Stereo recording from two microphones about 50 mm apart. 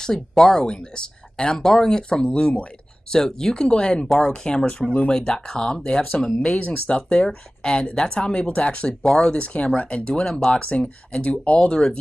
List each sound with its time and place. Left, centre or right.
0.0 s speech: centre